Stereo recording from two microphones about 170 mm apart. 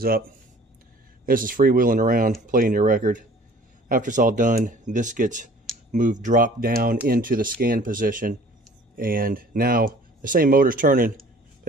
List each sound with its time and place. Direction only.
1.2 s speech: 55° right (ahead or behind)